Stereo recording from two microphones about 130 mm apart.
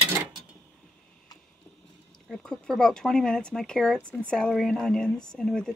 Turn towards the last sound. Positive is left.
turn(degrees=5)  # may be behind; listen again after turning